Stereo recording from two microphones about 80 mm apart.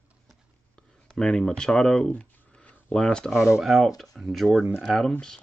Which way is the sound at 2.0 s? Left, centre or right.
Centre.